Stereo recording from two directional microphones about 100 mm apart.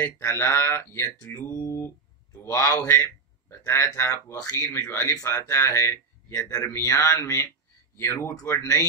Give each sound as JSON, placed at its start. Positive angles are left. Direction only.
{"t": 0.0, "sound": "speech", "side_deg": 25}